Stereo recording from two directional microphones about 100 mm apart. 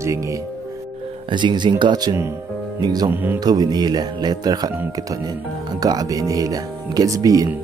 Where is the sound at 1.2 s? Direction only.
50° right (ahead or behind).